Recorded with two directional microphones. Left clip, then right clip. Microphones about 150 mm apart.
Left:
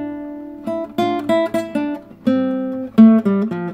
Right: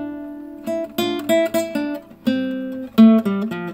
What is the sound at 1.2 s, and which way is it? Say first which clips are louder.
Music: even; 35° left (ahead or behind).